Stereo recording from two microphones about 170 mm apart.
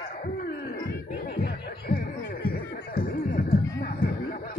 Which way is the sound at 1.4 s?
60° left (ahead or behind).